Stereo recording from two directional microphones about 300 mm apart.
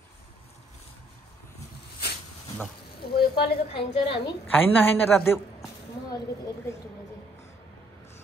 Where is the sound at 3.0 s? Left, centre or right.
Left.